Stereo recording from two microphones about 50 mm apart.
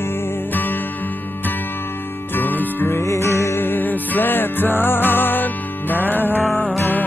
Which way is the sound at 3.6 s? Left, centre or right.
Left.